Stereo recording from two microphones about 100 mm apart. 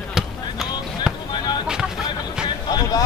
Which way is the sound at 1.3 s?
50° left (ahead or behind).